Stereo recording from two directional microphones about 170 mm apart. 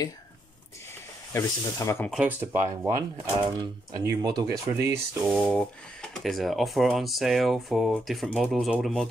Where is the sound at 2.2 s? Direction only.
10° right (ahead or behind).